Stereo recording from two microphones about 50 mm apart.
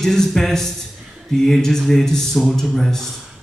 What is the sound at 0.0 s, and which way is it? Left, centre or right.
A man's voice, centre.